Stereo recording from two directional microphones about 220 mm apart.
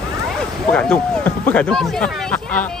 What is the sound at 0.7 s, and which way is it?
Speech, 5° left (ahead or behind).